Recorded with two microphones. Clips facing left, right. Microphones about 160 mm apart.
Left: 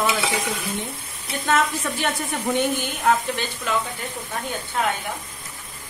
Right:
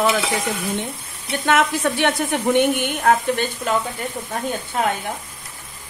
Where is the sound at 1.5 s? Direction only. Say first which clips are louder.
Right 4 dB; 75° right (ahead or behind); by 3.7 s 50° right (ahead or behind).